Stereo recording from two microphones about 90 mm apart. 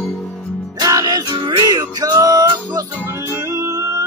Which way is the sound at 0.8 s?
40° right (ahead or behind).